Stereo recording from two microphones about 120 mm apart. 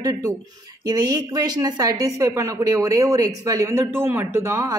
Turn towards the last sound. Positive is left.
turn(degrees=-25)  # may be behind; listen again after turning